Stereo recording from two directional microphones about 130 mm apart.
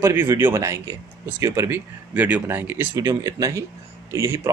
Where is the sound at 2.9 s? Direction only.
25° right (ahead or behind).